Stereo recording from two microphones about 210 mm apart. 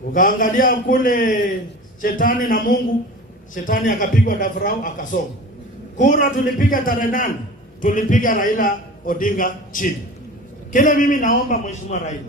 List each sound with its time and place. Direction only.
0.1 s a man's voice: 40° left (ahead or behind)